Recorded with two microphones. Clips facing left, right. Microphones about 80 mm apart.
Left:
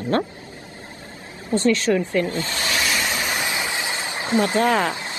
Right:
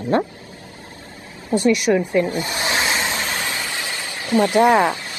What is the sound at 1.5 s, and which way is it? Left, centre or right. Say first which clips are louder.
Speech: right 2 dB; centre.